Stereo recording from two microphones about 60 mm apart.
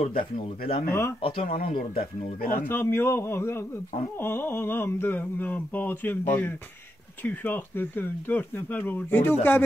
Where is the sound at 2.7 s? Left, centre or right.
Left.